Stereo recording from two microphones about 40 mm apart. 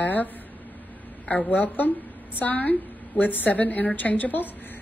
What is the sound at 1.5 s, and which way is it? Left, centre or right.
A woman's voice, left.